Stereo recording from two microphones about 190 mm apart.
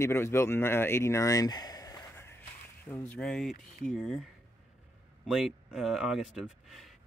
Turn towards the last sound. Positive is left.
turn(degrees=0)  # may be behind; listen again after turning